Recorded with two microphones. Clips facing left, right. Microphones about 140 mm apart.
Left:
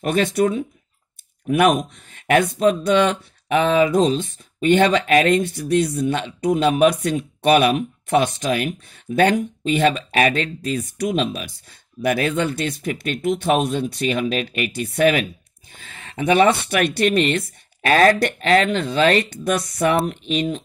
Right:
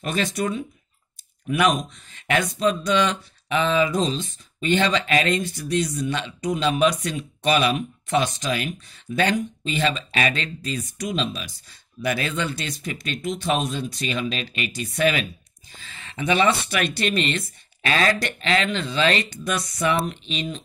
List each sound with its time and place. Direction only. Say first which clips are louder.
0.0 s speech: left 7 dB; 55° left (ahead or behind)